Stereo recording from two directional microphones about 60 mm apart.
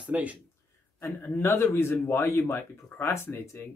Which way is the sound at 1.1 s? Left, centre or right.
Left.